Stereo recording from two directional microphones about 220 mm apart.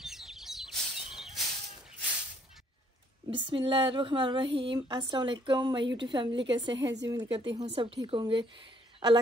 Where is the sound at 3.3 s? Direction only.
25° right (ahead or behind).